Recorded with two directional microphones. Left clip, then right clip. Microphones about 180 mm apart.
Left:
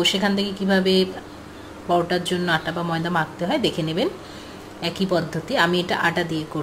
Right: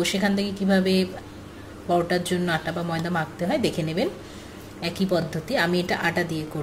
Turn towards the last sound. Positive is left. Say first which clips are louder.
# left 3 dB
turn(degrees=-10)  # may be behind; listen again after turning